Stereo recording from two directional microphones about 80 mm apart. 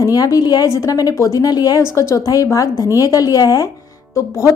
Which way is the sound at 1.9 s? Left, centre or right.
Left.